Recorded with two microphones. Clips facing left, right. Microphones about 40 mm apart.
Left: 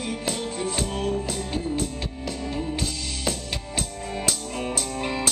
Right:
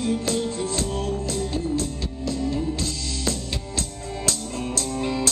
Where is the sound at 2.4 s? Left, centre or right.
Left.